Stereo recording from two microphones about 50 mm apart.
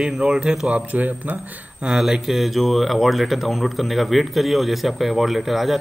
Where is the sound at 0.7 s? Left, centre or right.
Right.